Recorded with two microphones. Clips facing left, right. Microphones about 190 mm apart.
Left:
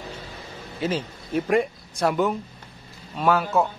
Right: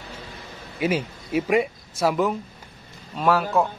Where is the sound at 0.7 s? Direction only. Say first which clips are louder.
Right 3 dB; 10° right (ahead or behind).